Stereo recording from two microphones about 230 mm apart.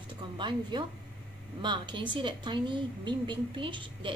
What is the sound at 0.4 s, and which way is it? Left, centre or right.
A woman's voice, centre.